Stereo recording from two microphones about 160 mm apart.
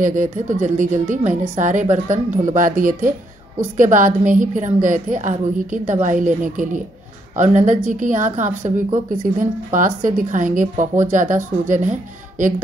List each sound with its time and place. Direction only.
0.0 s a woman's voice: 55° right (ahead or behind)